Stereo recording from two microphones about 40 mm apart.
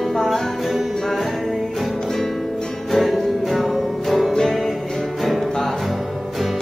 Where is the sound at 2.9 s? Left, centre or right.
Centre.